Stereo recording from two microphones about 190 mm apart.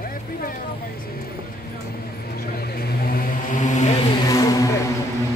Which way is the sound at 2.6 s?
55° left (ahead or behind).